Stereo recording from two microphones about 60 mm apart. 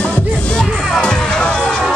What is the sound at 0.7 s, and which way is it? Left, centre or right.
Music, centre.